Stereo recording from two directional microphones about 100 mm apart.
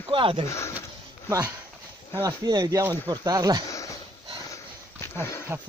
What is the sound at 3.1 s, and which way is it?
Speech, 40° right (ahead or behind).